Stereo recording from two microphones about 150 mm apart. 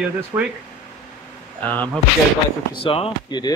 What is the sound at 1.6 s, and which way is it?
Speech, 10° left (ahead or behind).